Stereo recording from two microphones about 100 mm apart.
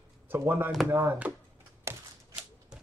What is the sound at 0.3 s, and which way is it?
Speech, 20° right (ahead or behind).